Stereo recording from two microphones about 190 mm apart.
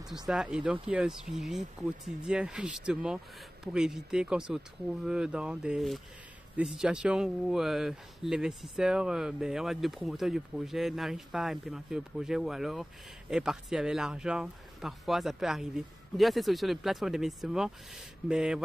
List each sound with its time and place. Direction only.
0.3 s speech: 5° right (ahead or behind)